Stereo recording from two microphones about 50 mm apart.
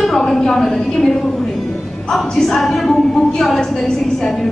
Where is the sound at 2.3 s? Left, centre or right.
Centre.